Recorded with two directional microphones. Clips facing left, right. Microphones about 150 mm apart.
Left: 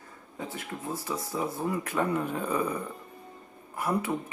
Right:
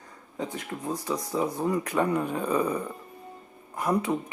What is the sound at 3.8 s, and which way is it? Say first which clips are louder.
Speech: right 3 dB; 15° right (ahead or behind).